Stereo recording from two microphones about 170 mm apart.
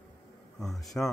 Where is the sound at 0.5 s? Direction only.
Centre (ahead or behind).